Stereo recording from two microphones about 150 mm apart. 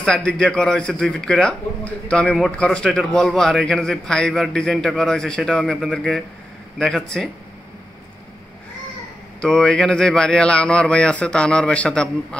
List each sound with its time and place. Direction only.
0.0 s a man's voice: 5° left (ahead or behind)
9.4 s a man's voice: 5° left (ahead or behind)